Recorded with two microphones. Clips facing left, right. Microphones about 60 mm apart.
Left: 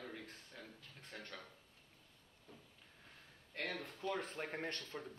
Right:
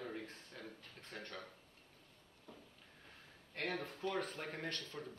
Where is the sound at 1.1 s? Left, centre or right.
Centre.